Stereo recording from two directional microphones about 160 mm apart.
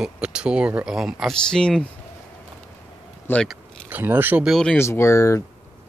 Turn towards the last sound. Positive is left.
turn(degrees=20)  # may be behind; listen again after turning